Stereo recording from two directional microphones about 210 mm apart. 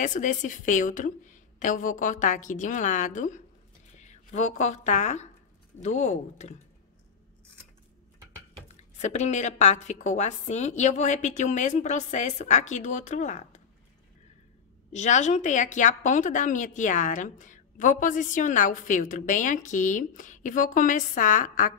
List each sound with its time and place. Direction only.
0.0 s a woman's voice: 35° left (ahead or behind)
8.6 s a woman's voice: 35° left (ahead or behind)
14.9 s a woman's voice: 35° left (ahead or behind)